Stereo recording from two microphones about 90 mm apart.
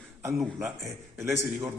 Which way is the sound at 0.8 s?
30° right (ahead or behind).